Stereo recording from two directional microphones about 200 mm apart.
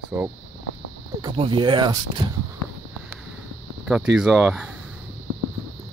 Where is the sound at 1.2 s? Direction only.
25° right (ahead or behind).